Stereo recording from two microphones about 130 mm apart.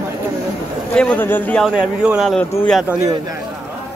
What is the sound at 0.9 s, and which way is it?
Speech, 10° left (ahead or behind).